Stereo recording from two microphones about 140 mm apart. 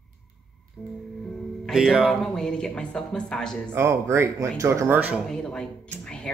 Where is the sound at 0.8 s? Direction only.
10° left (ahead or behind).